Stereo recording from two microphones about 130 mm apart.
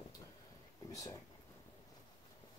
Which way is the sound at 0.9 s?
25° left (ahead or behind).